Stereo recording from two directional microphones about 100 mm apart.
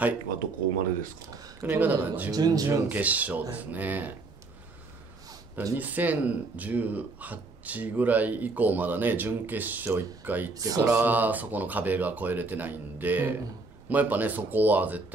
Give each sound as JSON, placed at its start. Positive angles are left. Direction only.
{"t": 1.3, "sound": "speech", "side_deg": -35}
{"t": 1.7, "sound": "speech", "side_deg": -15}
{"t": 2.3, "sound": "speech", "side_deg": -40}
{"t": 2.9, "sound": "speech", "side_deg": -15}
{"t": 5.8, "sound": "speech", "side_deg": -15}
{"t": 10.5, "sound": "speech", "side_deg": -35}
{"t": 10.9, "sound": "speech", "side_deg": -15}